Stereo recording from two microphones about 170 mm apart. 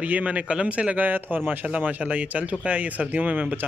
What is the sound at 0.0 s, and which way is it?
Speech, 10° right (ahead or behind).